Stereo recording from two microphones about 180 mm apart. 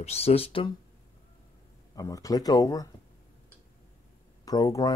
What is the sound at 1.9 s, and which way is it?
Speech, 20° left (ahead or behind).